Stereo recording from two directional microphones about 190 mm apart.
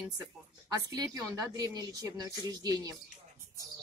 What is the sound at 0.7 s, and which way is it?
A woman's voice, 20° right (ahead or behind).